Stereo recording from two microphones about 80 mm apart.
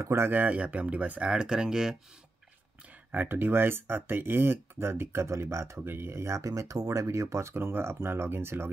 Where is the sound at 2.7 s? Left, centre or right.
Centre.